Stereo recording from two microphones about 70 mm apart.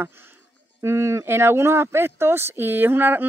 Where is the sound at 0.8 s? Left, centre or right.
Right.